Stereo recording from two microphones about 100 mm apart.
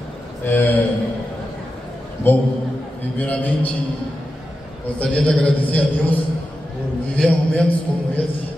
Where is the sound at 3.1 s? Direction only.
15° left (ahead or behind).